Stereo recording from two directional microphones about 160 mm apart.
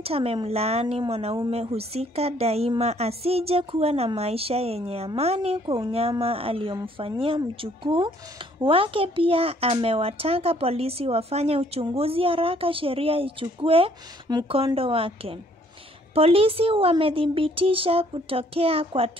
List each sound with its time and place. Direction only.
0.0 s speech: 35° right (ahead or behind)